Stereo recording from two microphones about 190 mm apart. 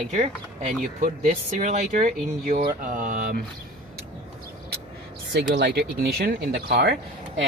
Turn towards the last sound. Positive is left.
turn(degrees=-60)  # may be behind; listen again after turning